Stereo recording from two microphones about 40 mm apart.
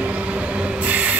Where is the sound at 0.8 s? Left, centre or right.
Right.